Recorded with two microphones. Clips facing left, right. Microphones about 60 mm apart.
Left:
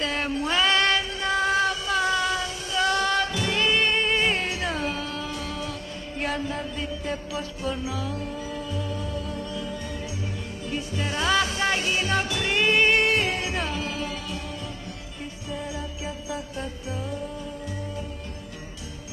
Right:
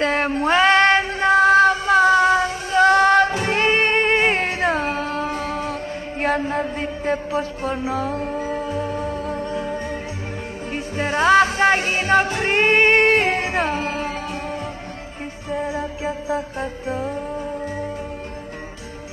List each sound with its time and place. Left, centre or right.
0.0 s music: right
6.2 s mantra: right
10.7 s music: right
15.5 s music: right